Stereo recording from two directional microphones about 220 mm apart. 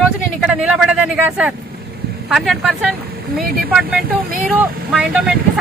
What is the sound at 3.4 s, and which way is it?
Speech, 40° right (ahead or behind).